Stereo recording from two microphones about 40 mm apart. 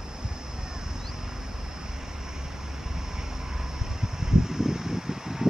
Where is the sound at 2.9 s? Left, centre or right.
Centre.